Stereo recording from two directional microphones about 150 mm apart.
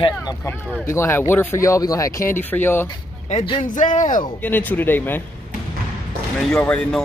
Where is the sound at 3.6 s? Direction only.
60° left (ahead or behind).